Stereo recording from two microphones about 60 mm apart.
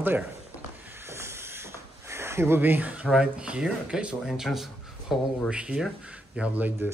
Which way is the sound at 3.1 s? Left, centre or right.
Centre.